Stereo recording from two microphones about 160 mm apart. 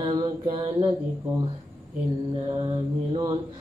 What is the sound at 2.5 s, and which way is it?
Mantra, 30° right (ahead or behind).